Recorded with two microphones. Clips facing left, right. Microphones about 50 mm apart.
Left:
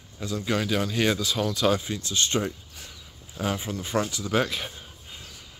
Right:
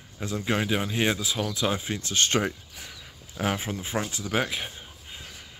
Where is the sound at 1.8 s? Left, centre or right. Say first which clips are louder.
Right 1 dB; right.